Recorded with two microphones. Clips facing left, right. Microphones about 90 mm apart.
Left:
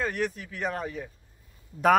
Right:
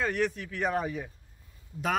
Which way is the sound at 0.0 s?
Centre (ahead or behind).